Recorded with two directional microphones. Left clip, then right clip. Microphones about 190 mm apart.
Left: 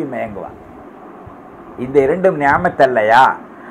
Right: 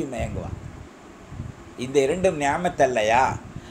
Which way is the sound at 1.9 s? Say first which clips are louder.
Left 8 dB; 25° right (ahead or behind).